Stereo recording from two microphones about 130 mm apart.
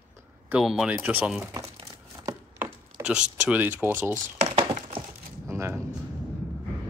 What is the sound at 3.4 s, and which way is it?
Speech, 10° right (ahead or behind).